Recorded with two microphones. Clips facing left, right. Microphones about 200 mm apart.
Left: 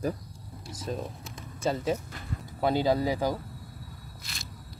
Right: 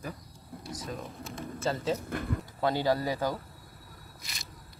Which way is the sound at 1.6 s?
15° left (ahead or behind).